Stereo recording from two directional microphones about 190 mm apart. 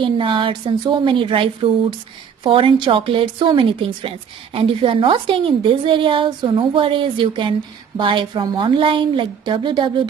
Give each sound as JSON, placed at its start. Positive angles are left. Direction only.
{"t": 0.0, "sound": "a woman's voice", "side_deg": -25}